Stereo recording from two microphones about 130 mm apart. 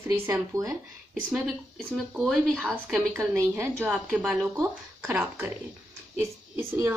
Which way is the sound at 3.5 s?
20° right (ahead or behind).